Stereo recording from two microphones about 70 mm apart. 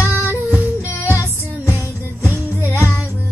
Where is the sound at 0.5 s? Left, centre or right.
Left.